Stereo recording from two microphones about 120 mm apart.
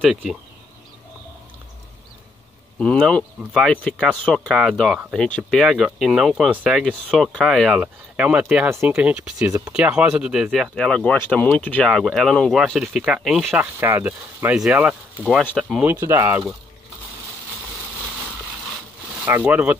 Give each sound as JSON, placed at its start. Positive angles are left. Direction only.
{"t": 0.0, "sound": "speech", "side_deg": 0}
{"t": 2.8, "sound": "speech", "side_deg": 5}
{"t": 7.8, "sound": "speech", "side_deg": -10}
{"t": 10.7, "sound": "speech", "side_deg": 5}
{"t": 13.6, "sound": "speech", "side_deg": -20}
{"t": 15.8, "sound": "speech", "side_deg": -20}
{"t": 19.2, "sound": "speech", "side_deg": -15}